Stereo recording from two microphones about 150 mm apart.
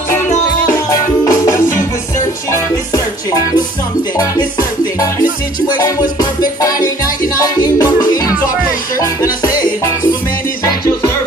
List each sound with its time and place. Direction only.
0.6 s music: 20° left (ahead or behind)
4.2 s music: 20° left (ahead or behind)
7.3 s music: 25° left (ahead or behind)